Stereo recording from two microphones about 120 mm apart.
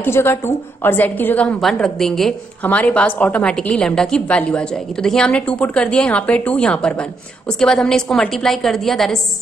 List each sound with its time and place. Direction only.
0.0 s a woman's voice: 20° left (ahead or behind)
1.6 s a woman's voice: 5° left (ahead or behind)